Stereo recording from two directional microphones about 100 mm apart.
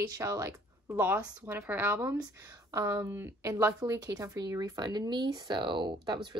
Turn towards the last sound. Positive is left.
turn(degrees=-50)  # may be behind; listen again after turning